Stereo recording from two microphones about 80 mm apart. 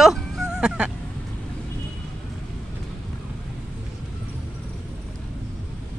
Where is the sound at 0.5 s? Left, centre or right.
Centre.